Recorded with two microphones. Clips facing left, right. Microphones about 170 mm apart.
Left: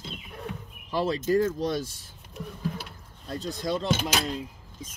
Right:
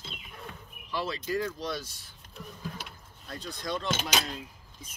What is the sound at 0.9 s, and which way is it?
Speech, 45° left (ahead or behind).